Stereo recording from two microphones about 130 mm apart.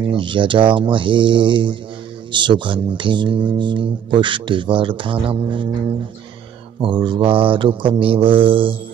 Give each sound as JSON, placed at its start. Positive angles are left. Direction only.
{"t": 0.1, "sound": "speech", "side_deg": -40}
{"t": 6.8, "sound": "speech", "side_deg": -40}